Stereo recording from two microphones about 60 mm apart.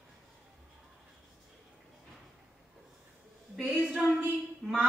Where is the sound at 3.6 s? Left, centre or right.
Right.